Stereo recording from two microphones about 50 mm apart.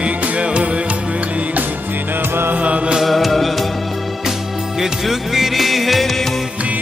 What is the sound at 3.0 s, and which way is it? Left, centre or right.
Music, centre.